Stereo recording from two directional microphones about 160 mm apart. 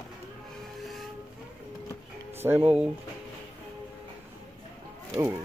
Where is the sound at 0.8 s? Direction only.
Centre (ahead or behind).